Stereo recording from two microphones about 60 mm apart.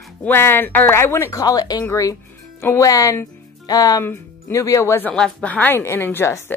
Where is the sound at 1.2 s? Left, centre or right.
Left.